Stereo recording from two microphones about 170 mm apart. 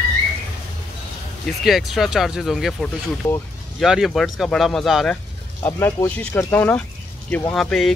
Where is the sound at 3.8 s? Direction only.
Centre (ahead or behind).